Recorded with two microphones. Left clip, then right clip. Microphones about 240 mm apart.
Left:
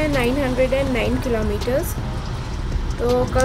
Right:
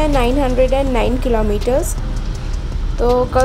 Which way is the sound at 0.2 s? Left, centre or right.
Centre.